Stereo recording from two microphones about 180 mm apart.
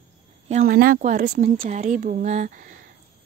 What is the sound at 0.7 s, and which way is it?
Speech, 55° right (ahead or behind).